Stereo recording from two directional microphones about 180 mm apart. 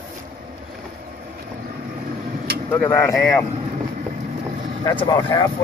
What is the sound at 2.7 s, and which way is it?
Speech, 10° left (ahead or behind).